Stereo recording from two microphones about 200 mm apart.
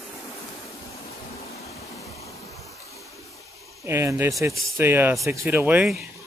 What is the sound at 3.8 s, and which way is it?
Speech, 15° right (ahead or behind).